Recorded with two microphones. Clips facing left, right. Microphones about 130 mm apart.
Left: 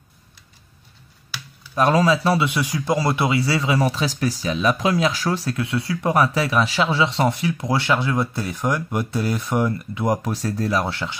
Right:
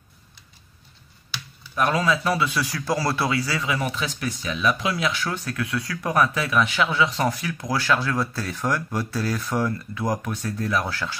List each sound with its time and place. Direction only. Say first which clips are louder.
1.8 s speech: left 5 dB; 35° left (ahead or behind)